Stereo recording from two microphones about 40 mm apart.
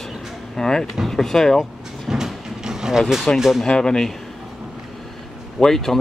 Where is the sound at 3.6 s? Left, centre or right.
Centre.